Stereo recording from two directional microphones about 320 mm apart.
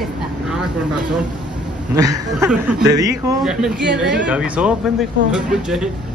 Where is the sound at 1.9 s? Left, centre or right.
Centre.